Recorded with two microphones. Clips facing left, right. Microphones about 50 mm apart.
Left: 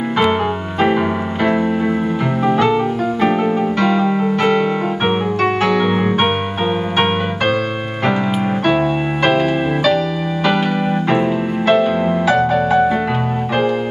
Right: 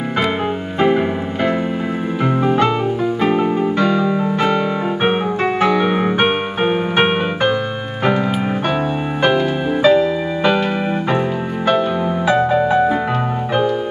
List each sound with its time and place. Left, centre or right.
0.8 s music: centre
3.8 s music: left
5.0 s music: right
9.8 s music: right
12.3 s music: right